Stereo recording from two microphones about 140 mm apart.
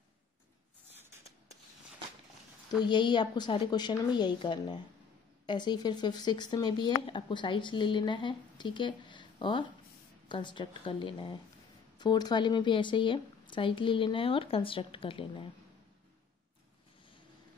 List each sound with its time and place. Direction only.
2.8 s speech: 35° left (ahead or behind)